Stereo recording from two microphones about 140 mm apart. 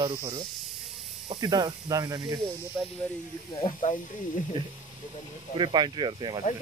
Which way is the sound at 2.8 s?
15° right (ahead or behind).